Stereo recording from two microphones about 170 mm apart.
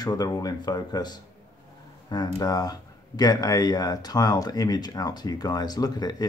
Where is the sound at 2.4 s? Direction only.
25° left (ahead or behind).